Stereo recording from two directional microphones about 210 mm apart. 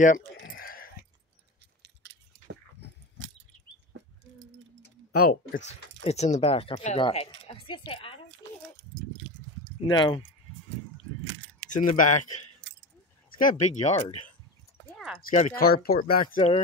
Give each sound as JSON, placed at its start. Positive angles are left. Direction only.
{"t": 0.0, "sound": "a sound", "side_deg": 40}
{"t": 1.8, "sound": "keys jangling", "side_deg": -60}
{"t": 5.1, "sound": "speech", "side_deg": 45}
{"t": 9.8, "sound": "speech", "side_deg": 25}
{"t": 11.2, "sound": "keys jangling", "side_deg": -60}
{"t": 11.7, "sound": "speech", "side_deg": 35}
{"t": 13.4, "sound": "speech", "side_deg": 35}
{"t": 15.0, "sound": "clip-clop", "side_deg": 0}
{"t": 15.2, "sound": "speech", "side_deg": 40}
{"t": 16.3, "sound": "speech", "side_deg": 30}